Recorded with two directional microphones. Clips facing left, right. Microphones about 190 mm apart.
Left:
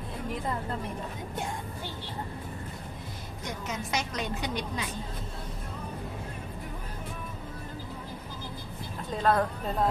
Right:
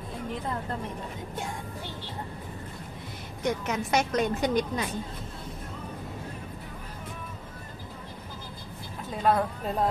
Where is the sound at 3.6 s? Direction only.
50° right (ahead or behind).